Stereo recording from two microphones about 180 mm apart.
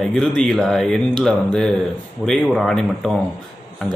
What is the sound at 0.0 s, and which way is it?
A man's voice, 5° left (ahead or behind).